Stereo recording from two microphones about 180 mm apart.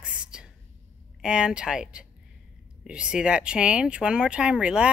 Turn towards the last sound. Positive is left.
turn(degrees=-5)  # may be behind; listen again after turning